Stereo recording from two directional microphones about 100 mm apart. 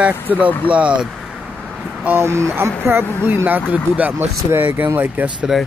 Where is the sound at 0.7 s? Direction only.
15° right (ahead or behind).